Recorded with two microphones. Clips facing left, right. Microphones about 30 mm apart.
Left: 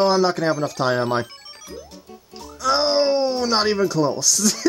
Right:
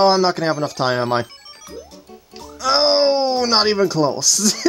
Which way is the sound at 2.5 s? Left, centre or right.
Right.